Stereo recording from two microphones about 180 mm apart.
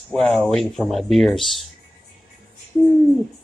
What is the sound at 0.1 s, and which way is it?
Speech, centre (ahead or behind).